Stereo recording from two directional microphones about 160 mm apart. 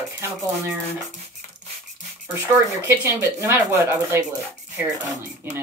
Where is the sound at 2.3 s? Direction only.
15° right (ahead or behind).